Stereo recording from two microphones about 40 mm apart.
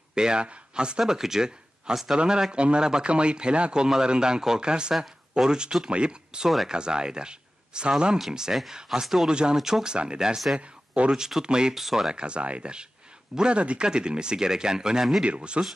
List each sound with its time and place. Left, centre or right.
0.1 s a man's voice: right
9.0 s speech: centre
9.3 s a man's voice: right
9.6 s speech: centre
9.8 s a man's voice: right
11.7 s speech: centre
12.1 s a man's voice: right
15.2 s a man's voice: right